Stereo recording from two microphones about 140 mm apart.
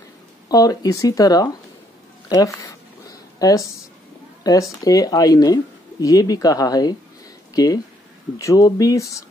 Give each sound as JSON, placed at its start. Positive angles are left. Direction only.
{"t": 0.5, "sound": "speech", "side_deg": 25}
{"t": 2.2, "sound": "a sound", "side_deg": 25}
{"t": 4.4, "sound": "speech", "side_deg": 25}